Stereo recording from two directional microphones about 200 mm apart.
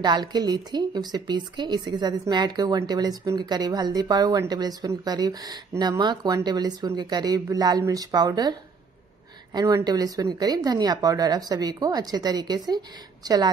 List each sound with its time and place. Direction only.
0.0 s speech: 20° right (ahead or behind)